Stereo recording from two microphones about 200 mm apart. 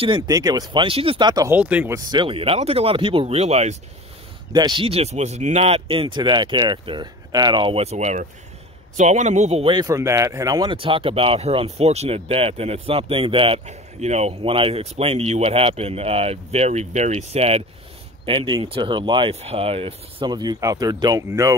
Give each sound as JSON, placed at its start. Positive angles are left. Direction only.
{"t": 0.0, "sound": "speech", "side_deg": -20}
{"t": 1.6, "sound": "speech", "side_deg": -5}
{"t": 4.5, "sound": "speech", "side_deg": -20}